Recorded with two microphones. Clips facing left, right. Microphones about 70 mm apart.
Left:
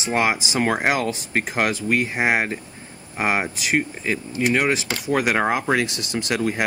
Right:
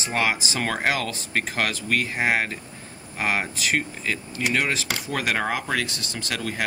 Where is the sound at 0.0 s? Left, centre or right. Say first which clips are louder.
Left 3 dB; left.